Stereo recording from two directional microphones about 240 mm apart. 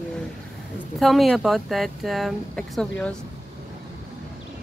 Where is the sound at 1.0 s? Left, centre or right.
Centre.